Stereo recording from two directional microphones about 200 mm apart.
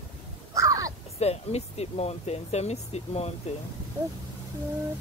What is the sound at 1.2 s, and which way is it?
Speech, 30° left (ahead or behind).